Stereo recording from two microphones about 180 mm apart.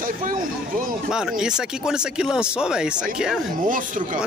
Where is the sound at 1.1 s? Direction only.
5° right (ahead or behind).